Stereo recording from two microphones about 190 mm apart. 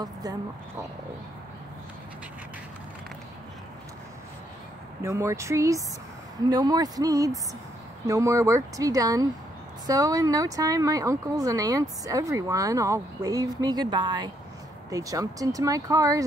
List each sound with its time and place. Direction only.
0.0 s speech: 20° right (ahead or behind)
5.0 s speech: 15° right (ahead or behind)